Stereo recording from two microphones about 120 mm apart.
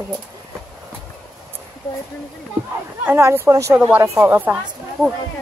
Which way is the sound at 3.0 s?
20° right (ahead or behind).